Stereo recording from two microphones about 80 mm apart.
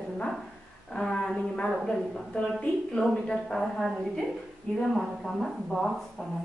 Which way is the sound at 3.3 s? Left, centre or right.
Centre.